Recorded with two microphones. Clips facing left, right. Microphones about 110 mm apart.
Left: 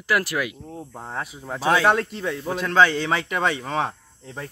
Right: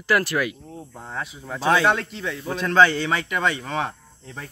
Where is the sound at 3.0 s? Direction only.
30° left (ahead or behind).